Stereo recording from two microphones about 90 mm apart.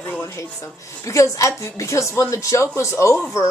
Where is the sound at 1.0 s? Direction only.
35° left (ahead or behind).